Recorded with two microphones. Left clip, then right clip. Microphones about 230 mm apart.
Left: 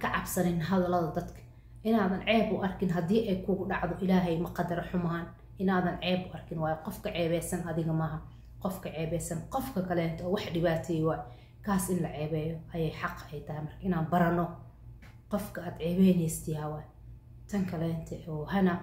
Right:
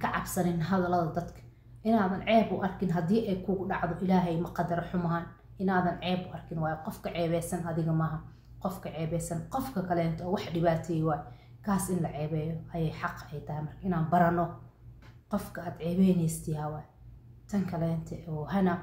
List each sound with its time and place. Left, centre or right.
0.0 s a woman's voice: centre